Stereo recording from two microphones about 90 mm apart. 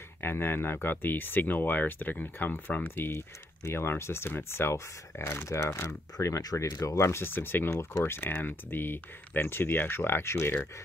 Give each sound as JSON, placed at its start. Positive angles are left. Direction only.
{"t": 0.2, "sound": "speech", "side_deg": 25}